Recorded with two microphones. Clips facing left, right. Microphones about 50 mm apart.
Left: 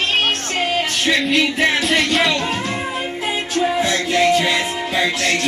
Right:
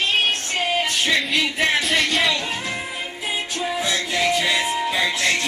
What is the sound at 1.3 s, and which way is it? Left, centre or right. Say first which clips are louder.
Music: left 4 dB; centre.